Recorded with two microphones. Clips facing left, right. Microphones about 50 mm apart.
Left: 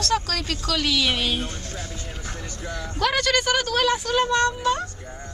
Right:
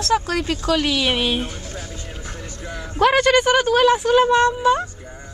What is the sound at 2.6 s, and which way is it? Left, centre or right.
Speech, centre.